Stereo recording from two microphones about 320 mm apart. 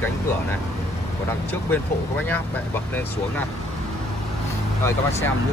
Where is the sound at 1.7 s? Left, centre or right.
Centre.